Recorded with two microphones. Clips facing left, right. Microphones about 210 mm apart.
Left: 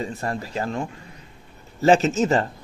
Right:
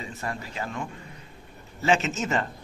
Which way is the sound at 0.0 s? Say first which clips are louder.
Left 6 dB; 40° left (ahead or behind).